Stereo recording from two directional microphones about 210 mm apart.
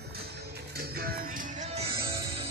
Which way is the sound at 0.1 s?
50° right (ahead or behind).